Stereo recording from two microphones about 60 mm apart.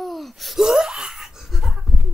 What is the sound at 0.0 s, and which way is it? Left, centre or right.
Wail, centre.